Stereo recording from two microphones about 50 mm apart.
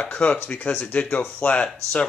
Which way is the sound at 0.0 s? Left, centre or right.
Left.